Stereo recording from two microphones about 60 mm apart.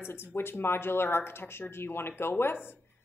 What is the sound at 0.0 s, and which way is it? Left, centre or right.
A woman's voice, left.